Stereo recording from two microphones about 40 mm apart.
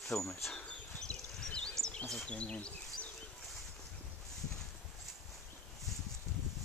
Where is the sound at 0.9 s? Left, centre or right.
Centre.